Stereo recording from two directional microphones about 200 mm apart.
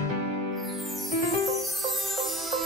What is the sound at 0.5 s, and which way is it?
Music, centre (ahead or behind).